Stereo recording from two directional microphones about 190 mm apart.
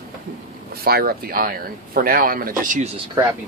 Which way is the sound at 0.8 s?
55° right (ahead or behind).